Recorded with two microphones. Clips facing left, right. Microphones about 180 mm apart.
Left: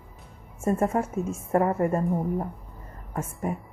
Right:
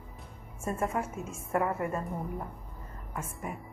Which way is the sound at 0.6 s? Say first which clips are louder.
Left 7 dB; 40° left (ahead or behind).